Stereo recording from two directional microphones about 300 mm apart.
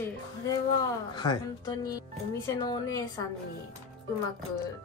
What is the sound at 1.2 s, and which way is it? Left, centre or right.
Speech, centre.